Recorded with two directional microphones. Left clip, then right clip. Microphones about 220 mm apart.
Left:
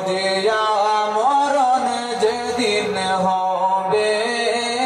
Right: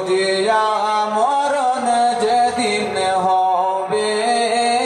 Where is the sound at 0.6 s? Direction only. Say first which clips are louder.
Right 1 dB; 30° right (ahead or behind).